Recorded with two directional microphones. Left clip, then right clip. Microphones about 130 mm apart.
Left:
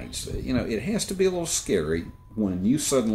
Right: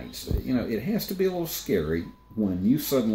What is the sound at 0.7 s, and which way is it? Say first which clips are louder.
Speech: left 1 dB; 20° left (ahead or behind).